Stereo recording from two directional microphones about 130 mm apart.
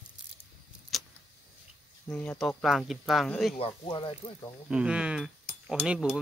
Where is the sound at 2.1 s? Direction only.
10° left (ahead or behind).